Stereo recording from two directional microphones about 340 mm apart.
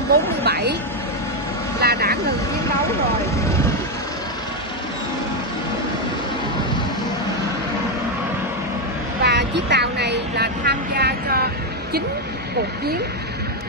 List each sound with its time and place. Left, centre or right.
0.4 s vehicle: right
1.8 s vehicle: right
9.2 s a sound: right